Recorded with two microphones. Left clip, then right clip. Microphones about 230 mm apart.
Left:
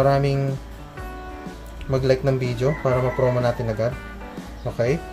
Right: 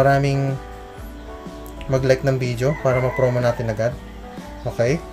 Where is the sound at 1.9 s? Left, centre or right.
Centre.